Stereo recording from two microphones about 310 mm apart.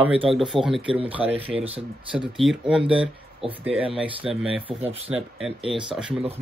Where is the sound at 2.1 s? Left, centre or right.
Centre.